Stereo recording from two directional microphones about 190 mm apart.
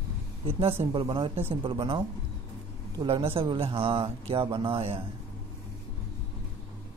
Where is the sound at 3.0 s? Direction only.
30° right (ahead or behind).